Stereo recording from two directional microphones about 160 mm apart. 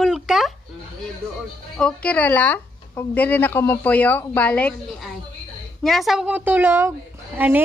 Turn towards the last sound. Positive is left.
turn(degrees=-10)  # may be behind; listen again after turning